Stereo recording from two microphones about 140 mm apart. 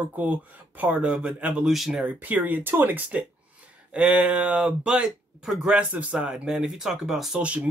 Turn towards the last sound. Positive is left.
turn(degrees=-5)  # may be behind; listen again after turning